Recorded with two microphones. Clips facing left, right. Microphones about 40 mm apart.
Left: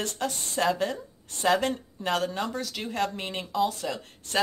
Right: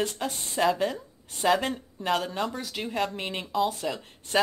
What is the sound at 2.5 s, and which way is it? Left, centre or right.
Speech, centre.